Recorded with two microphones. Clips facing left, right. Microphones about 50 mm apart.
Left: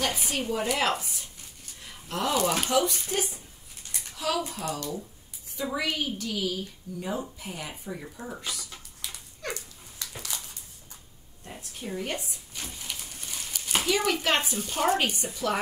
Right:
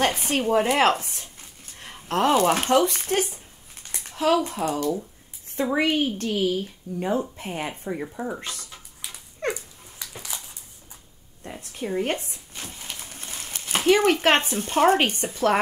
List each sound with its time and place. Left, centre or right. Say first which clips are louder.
0.0 s a woman's voice: right 7 dB; right
8.4 s speech: right 1 dB; right
8.6 s a sound: right 1 dB; centre
9.5 s dog: right 6 dB; centre
11.7 s speech: right 7 dB; right
12.6 s a sound: right 1 dB; right
13.8 s speech: right 9 dB; right